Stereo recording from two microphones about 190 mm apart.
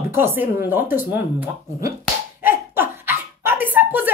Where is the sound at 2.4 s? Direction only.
10° right (ahead or behind).